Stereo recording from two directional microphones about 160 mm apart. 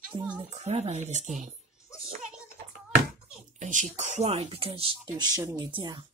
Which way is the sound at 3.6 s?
50° right (ahead or behind).